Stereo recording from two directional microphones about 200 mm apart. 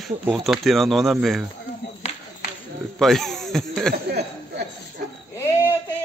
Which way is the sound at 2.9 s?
Centre (ahead or behind).